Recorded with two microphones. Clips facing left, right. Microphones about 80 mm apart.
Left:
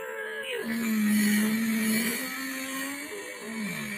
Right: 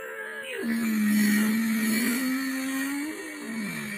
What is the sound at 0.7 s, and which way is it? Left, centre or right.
Wild animals, centre.